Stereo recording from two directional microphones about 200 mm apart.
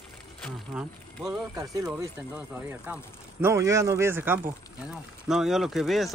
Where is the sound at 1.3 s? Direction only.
20° right (ahead or behind).